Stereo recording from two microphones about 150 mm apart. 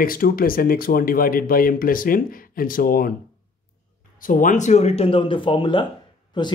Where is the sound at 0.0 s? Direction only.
75° left (ahead or behind).